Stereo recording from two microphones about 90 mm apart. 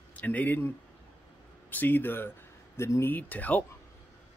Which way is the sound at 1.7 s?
20° left (ahead or behind).